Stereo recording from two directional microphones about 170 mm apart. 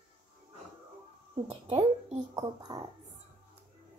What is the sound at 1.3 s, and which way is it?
Speech, 30° right (ahead or behind).